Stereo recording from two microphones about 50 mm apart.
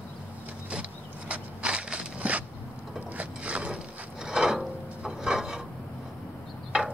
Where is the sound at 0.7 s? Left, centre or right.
Right.